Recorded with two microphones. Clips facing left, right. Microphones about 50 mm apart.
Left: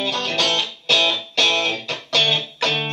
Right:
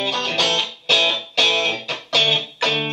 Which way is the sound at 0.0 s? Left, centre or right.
Centre.